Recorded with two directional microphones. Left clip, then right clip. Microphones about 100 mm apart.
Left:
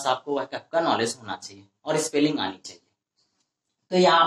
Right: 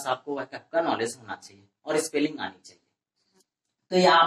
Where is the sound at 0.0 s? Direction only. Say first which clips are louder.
Left 4 dB; 30° left (ahead or behind).